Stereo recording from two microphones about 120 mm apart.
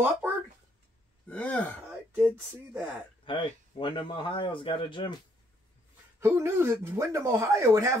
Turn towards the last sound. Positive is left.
turn(degrees=-25)  # may be behind; listen again after turning